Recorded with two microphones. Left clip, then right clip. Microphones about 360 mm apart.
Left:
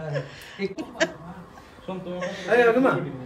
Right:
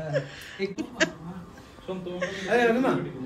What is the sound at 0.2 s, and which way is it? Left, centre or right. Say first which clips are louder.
Speech: right 1 dB; centre.